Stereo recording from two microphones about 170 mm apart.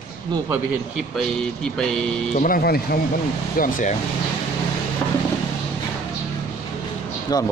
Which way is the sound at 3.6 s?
50° left (ahead or behind).